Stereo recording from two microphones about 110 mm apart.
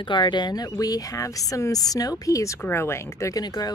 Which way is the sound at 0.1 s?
45° left (ahead or behind).